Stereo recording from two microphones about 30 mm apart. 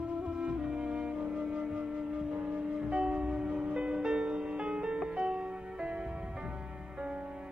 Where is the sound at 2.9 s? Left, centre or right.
Right.